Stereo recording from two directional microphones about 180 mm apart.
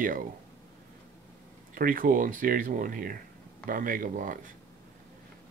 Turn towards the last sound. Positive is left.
turn(degrees=-45)  # may be behind; listen again after turning